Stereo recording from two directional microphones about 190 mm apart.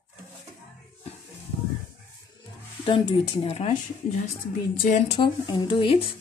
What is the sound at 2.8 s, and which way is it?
Speech, 25° left (ahead or behind).